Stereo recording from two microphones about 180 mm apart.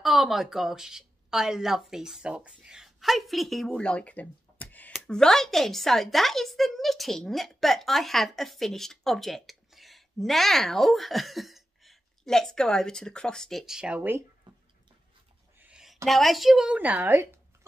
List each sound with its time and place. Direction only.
0.0 s a woman's voice: centre (ahead or behind)
14.5 s drip: 25° right (ahead or behind)
15.6 s a sound: 5° right (ahead or behind)
16.1 s speech: centre (ahead or behind)